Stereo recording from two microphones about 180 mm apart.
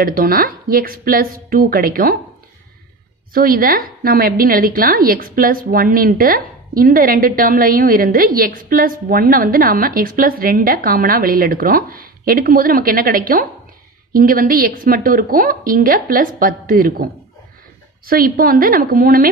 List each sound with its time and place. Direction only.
0.0 s a woman's voice: 55° right (ahead or behind)
3.3 s a woman's voice: 55° right (ahead or behind)